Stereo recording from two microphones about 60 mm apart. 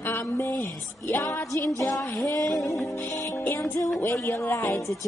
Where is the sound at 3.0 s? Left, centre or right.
Left.